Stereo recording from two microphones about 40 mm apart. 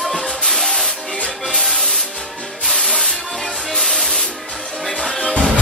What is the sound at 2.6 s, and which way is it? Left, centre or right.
Sanding, centre.